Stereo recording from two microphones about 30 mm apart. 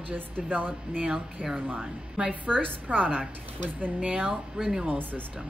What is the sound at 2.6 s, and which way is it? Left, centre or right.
A woman's voice, right.